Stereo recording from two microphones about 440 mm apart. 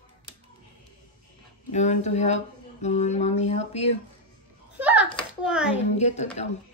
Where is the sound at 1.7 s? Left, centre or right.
Centre.